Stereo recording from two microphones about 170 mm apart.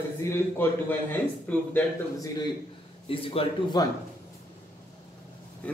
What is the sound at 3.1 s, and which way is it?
Speech, 35° left (ahead or behind).